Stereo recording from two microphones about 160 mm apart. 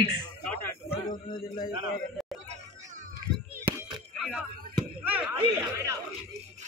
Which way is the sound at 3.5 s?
10° right (ahead or behind).